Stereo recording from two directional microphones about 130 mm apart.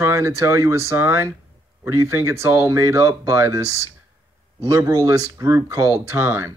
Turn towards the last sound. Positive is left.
turn(degrees=-20)  # may be behind; listen again after turning